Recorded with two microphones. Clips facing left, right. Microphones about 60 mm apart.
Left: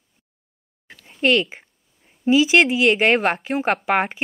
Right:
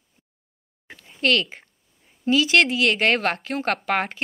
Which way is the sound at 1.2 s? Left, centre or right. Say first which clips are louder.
Left 3 dB; centre.